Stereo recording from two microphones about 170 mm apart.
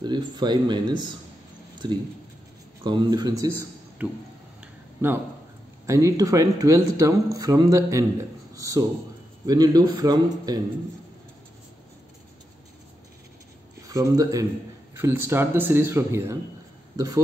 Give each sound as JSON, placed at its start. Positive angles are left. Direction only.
{"t": 0.0, "sound": "speech", "side_deg": -25}
{"t": 4.0, "sound": "speech", "side_deg": -10}
{"t": 4.6, "sound": "a sound", "side_deg": -10}
{"t": 5.9, "sound": "speech", "side_deg": -20}
{"t": 13.8, "sound": "speech", "side_deg": -20}